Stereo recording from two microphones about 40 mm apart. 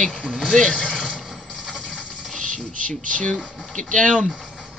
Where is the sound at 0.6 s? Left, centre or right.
Centre.